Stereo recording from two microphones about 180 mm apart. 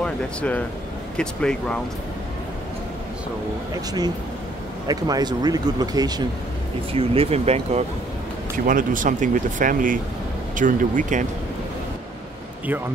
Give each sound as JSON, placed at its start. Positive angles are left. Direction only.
{"t": 0.0, "sound": "speech", "side_deg": 10}
{"t": 4.8, "sound": "speech", "side_deg": -20}
{"t": 6.9, "sound": "speech", "side_deg": -30}
{"t": 8.6, "sound": "speech", "side_deg": -50}